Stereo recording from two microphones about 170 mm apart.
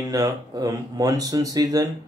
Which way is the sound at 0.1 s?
20° right (ahead or behind).